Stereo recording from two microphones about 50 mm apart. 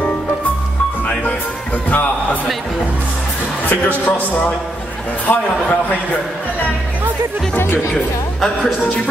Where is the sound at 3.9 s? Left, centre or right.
Left.